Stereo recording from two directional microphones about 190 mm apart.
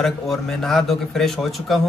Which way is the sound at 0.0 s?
Centre (ahead or behind).